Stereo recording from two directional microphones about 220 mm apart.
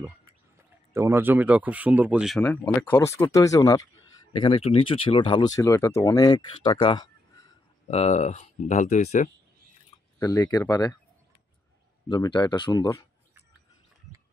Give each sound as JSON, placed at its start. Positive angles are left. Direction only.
{"t": 0.9, "sound": "speech", "side_deg": -10}
{"t": 10.1, "sound": "speech", "side_deg": 15}
{"t": 12.1, "sound": "speech", "side_deg": 20}